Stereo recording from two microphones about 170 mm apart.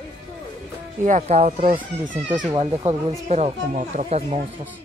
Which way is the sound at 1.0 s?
45° right (ahead or behind).